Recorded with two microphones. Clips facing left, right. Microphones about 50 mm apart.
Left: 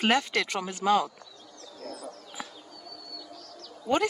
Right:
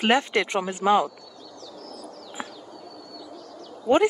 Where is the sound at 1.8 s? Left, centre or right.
Left.